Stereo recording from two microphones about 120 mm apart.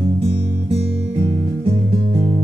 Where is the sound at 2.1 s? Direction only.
45° right (ahead or behind).